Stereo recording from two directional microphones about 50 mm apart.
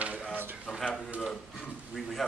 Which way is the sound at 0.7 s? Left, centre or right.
Centre.